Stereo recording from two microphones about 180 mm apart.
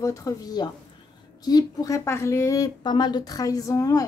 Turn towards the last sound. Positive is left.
turn(degrees=20)  # may be behind; listen again after turning